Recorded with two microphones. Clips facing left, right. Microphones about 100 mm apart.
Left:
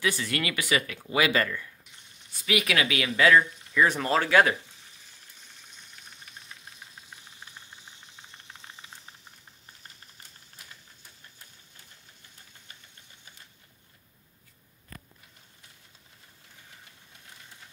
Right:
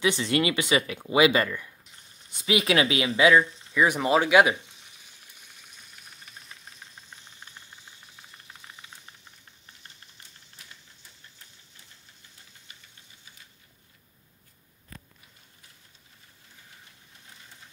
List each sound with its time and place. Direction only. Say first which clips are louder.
0.0 s speech: right 5 dB; 20° right (ahead or behind)
3.3 s speech: right 1 dB; 10° right (ahead or behind)